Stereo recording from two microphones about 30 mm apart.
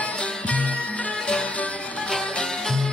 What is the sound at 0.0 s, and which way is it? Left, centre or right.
Music, left.